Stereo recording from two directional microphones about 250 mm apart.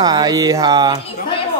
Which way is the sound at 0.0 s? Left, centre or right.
Centre.